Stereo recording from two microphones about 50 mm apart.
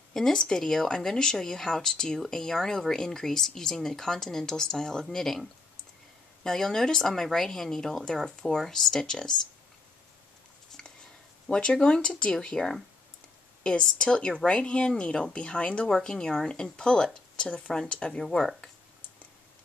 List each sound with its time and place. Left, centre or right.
0.1 s speech: centre
10.8 s a sound: centre
11.4 s speech: centre
15.9 s speech: centre